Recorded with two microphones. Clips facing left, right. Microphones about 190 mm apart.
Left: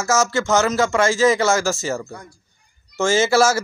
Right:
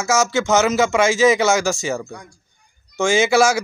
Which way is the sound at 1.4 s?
Centre (ahead or behind).